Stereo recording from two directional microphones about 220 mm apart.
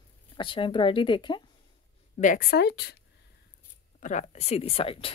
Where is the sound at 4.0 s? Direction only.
35° left (ahead or behind).